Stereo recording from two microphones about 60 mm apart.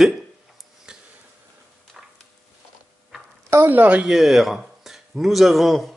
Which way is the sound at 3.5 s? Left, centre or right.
Right.